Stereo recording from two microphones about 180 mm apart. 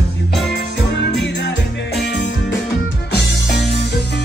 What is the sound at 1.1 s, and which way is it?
Music, 75° left (ahead or behind).